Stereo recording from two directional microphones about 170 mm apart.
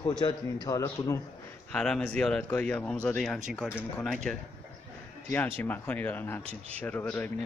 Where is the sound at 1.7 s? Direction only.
5° left (ahead or behind).